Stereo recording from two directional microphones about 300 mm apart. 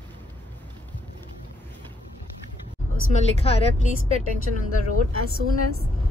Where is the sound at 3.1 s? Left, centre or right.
Centre.